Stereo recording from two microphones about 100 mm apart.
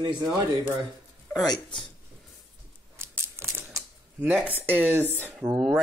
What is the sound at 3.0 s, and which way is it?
Crumpling, 25° right (ahead or behind).